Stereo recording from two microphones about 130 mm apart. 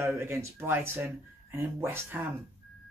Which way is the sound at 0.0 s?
15° right (ahead or behind).